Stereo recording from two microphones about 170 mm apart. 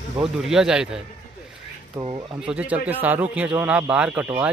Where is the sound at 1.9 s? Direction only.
30° right (ahead or behind).